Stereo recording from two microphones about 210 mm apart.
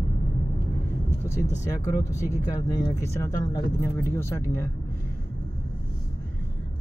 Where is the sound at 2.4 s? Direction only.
15° left (ahead or behind).